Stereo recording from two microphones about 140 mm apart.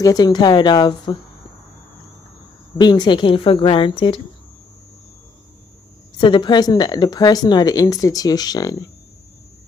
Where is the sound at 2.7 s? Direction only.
30° left (ahead or behind).